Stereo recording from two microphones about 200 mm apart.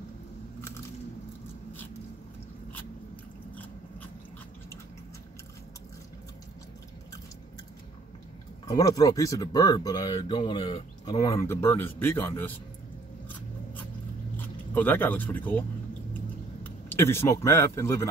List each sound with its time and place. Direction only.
8.6 s speech: 20° left (ahead or behind)
14.3 s speech: 10° left (ahead or behind)
16.6 s speech: 10° left (ahead or behind)